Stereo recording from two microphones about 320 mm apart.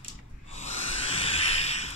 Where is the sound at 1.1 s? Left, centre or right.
Centre.